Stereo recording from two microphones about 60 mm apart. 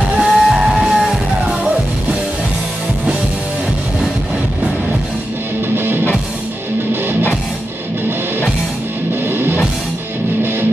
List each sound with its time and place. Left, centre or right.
0.2 s music: centre
6.9 s music: right
9.3 s music: right